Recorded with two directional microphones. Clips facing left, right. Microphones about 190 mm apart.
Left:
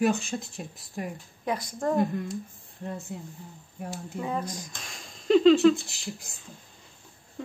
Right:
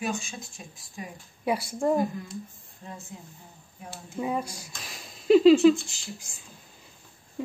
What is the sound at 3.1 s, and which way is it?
Speech, 65° left (ahead or behind).